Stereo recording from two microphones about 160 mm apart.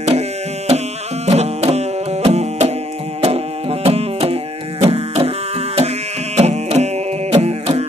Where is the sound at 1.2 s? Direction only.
40° right (ahead or behind).